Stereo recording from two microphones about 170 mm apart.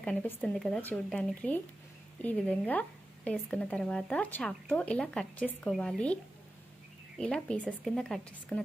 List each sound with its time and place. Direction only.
0.0 s speech: 5° left (ahead or behind)
7.2 s speech: 5° left (ahead or behind)